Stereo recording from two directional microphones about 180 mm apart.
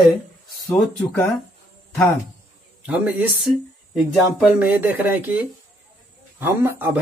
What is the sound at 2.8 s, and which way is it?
Speech, 10° right (ahead or behind).